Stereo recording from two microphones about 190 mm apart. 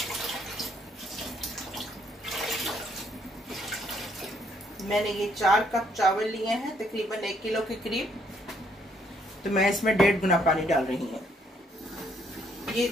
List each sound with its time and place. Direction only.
0.0 s bathtub: centre (ahead or behind)
3.4 s water: centre (ahead or behind)
4.7 s a woman's voice: centre (ahead or behind)
9.4 s a woman's voice: centre (ahead or behind)
12.6 s train: centre (ahead or behind)